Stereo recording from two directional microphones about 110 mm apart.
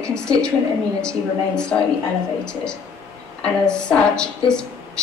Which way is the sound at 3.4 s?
5° left (ahead or behind).